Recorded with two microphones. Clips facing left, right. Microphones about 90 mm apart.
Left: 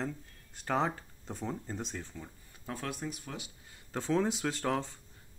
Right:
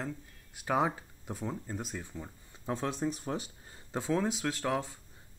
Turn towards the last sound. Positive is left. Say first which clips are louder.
# even
turn(degrees=-5)  # may be behind; listen again after turning